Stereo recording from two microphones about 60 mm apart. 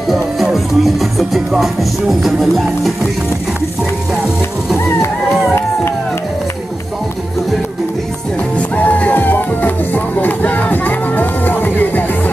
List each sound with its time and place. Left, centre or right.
0.1 s music: centre
8.7 s music: left